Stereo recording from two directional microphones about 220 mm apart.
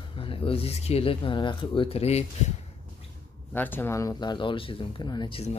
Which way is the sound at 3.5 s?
10° left (ahead or behind).